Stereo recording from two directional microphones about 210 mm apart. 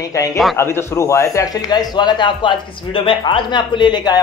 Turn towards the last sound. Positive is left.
turn(degrees=20)  # may be behind; listen again after turning